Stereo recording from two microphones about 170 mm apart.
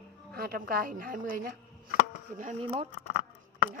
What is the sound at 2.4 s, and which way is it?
Speech, 40° right (ahead or behind).